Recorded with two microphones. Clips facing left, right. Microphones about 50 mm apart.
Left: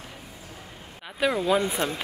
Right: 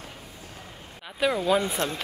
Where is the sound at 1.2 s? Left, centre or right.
Centre.